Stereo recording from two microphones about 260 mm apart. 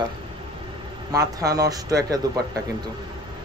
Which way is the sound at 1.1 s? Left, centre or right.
Centre.